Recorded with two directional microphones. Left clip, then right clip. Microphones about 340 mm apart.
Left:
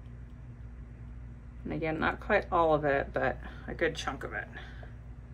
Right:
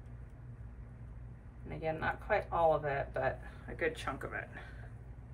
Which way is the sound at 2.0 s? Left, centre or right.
Centre.